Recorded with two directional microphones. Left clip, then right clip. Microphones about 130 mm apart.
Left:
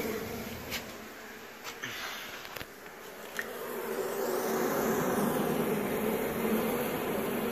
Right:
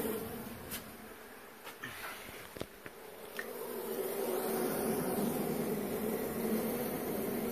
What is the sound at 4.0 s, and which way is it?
Vehicle, 5° right (ahead or behind).